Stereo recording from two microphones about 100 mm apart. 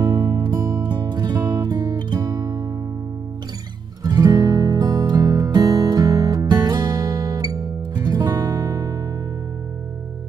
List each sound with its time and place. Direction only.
0.0 s music: 45° right (ahead or behind)
4.0 s music: 40° right (ahead or behind)